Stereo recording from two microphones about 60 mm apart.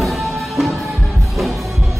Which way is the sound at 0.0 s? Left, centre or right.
Centre.